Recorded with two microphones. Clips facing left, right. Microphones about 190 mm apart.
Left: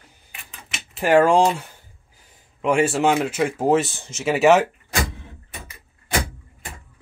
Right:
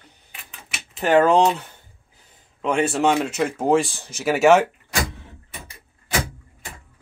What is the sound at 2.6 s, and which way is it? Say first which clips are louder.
Speech: left 1 dB; 5° left (ahead or behind).